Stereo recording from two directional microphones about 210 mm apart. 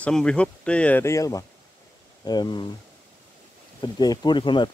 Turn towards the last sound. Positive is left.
turn(degrees=20)  # may be behind; listen again after turning